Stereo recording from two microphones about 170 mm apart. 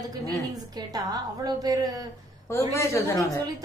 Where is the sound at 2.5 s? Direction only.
15° left (ahead or behind).